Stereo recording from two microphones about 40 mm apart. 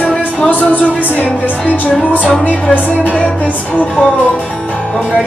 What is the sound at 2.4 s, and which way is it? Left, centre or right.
Music, left.